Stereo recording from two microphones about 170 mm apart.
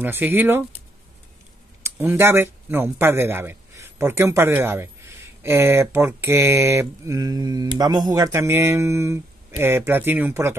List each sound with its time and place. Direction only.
0.0 s speech: 10° right (ahead or behind)